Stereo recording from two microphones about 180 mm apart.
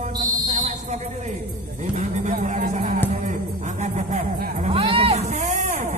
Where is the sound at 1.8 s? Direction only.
45° right (ahead or behind).